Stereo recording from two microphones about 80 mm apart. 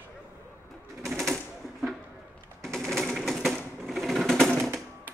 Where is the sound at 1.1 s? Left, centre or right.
Centre.